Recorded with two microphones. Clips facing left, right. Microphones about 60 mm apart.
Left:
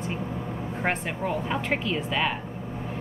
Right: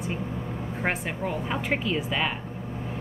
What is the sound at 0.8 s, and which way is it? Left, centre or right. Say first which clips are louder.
Speech: left 1 dB; centre.